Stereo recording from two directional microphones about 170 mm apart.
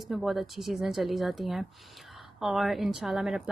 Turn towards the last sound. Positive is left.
turn(degrees=0)  # may be behind; listen again after turning